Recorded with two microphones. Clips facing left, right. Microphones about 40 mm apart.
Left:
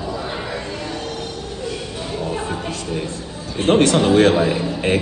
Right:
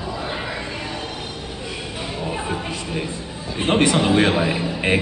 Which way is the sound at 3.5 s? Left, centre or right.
Centre.